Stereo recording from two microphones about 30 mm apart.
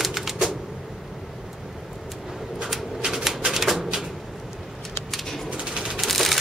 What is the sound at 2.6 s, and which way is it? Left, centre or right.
Shuffling cards, centre.